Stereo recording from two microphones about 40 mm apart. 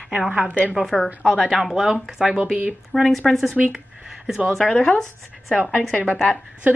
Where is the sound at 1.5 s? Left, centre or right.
Centre; by 2.7 s right.